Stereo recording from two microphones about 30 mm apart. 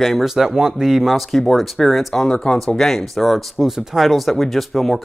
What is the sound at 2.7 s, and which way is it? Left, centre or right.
Speech, centre.